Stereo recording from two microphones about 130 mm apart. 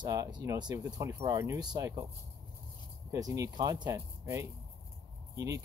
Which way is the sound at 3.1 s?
25° right (ahead or behind).